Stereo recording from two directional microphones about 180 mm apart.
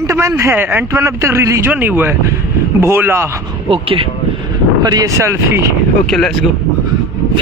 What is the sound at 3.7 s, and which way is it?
Speech, 30° right (ahead or behind).